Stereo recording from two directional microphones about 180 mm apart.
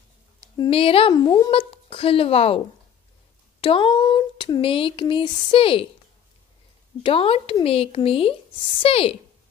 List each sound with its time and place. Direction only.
0.6 s speech: 30° left (ahead or behind)
3.6 s speech: 30° left (ahead or behind)
7.0 s speech: 30° left (ahead or behind)